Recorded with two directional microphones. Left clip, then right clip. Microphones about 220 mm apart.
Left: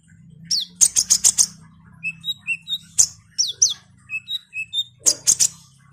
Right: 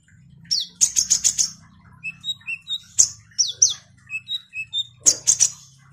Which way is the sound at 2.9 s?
15° left (ahead or behind).